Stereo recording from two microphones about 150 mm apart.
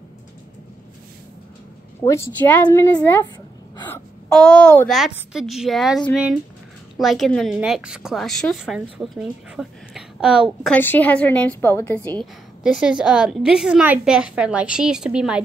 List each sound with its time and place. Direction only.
2.0 s a woman's voice: 20° left (ahead or behind)
4.3 s a woman's voice: 5° left (ahead or behind)
10.6 s a woman's voice: 10° left (ahead or behind)
12.6 s a woman's voice: 5° right (ahead or behind)